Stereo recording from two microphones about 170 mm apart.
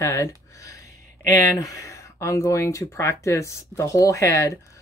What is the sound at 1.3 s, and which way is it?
Speech, 20° left (ahead or behind).